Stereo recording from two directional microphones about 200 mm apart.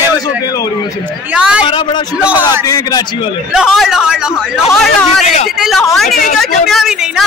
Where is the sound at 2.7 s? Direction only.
20° left (ahead or behind).